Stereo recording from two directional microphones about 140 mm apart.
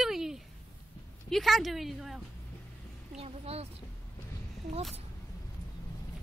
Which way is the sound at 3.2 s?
45° right (ahead or behind).